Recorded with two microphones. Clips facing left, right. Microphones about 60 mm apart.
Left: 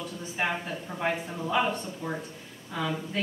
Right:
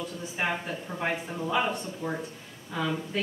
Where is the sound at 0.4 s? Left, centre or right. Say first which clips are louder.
Even; centre.